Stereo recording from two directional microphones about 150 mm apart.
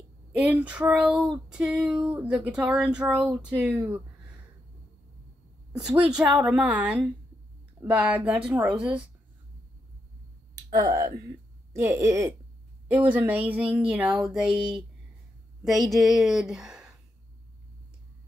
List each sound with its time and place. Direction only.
0.3 s speech: 5° right (ahead or behind)
5.9 s a woman's voice: 10° right (ahead or behind)
10.8 s speech: 25° right (ahead or behind); by 14.6 s 5° right (ahead or behind)
15.6 s a woman's voice: centre (ahead or behind)